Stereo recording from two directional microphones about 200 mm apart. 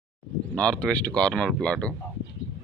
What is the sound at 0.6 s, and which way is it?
Speech, 5° left (ahead or behind).